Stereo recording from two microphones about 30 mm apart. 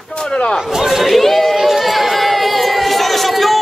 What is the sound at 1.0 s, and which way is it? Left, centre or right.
Chatter, centre.